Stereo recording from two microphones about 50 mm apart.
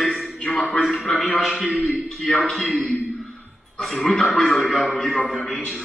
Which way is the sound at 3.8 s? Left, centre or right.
Centre.